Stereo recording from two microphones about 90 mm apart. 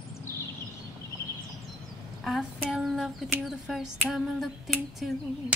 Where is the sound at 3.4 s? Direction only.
5° right (ahead or behind).